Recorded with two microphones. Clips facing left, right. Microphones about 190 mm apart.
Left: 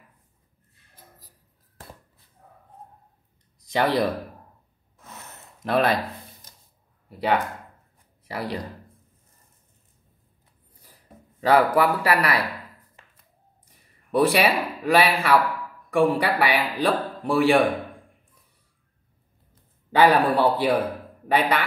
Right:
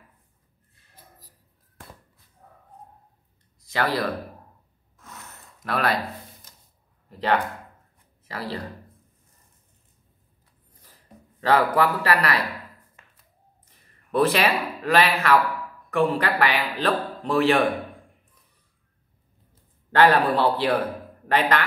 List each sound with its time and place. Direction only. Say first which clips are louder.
3.6 s speech: left 3 dB; 20° left (ahead or behind)
5.6 s speech: left 4 dB; 25° left (ahead or behind)
7.1 s a man's voice: even; 10° left (ahead or behind)
11.4 s a man's voice: left 2 dB; 10° left (ahead or behind)
13.7 s a man's voice: left 1 dB; 10° left (ahead or behind)
19.9 s a man's voice: even; 10° left (ahead or behind)